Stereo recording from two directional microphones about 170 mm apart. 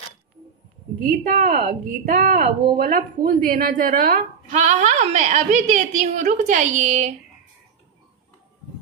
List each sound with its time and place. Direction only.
1.3 s a woman's voice: 65° right (ahead or behind); by 7.2 s 45° right (ahead or behind)